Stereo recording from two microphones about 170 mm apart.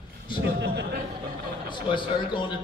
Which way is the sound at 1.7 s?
30° left (ahead or behind).